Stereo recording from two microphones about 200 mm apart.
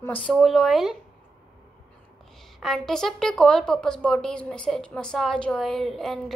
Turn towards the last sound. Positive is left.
turn(degrees=0)  # may be behind; listen again after turning